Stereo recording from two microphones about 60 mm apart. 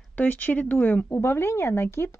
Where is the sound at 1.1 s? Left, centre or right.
Left.